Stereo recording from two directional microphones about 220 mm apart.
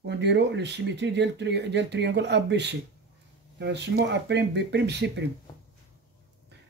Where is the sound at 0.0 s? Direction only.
50° right (ahead or behind).